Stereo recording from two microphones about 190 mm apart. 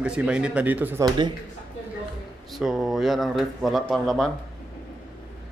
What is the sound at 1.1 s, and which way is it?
Speech, 25° right (ahead or behind).